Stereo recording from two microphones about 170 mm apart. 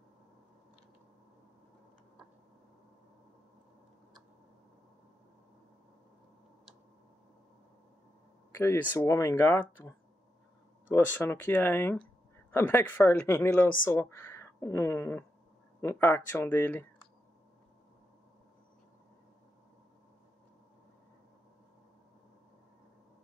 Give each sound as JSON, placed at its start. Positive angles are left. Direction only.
{"t": 8.5, "sound": "speech", "side_deg": 15}